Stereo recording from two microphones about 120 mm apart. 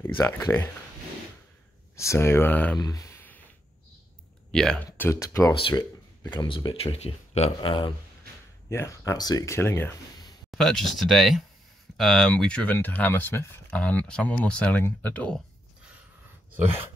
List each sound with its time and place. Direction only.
0.0 s speech: 20° left (ahead or behind)
2.0 s speech: 25° left (ahead or behind)
2.8 s a sound: 30° left (ahead or behind)
4.5 s speech: 5° left (ahead or behind)
4.9 s speech: 15° left (ahead or behind)
5.6 s speech: 45° left (ahead or behind)
8.6 s speech: 25° left (ahead or behind)
9.6 s speech: 20° left (ahead or behind)
10.5 s speech: 5° left (ahead or behind)